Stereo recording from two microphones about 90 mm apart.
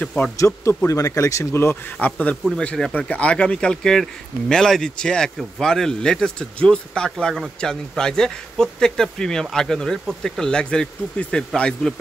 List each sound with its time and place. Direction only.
0.0 s speech: 15° left (ahead or behind)
0.8 s speech: 40° left (ahead or behind); by 11.9 s 10° left (ahead or behind)